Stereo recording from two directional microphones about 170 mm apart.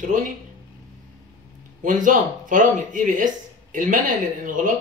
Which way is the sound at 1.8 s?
50° right (ahead or behind).